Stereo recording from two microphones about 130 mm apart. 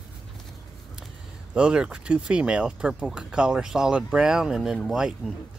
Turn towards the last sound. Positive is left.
turn(degrees=-5)  # may be behind; listen again after turning